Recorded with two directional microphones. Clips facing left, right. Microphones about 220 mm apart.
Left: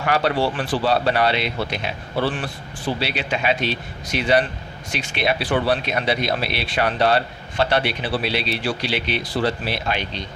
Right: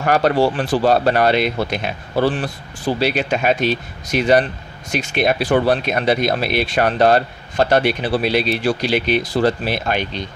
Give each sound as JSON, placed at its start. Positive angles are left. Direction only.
{"t": 0.0, "sound": "speech", "side_deg": -45}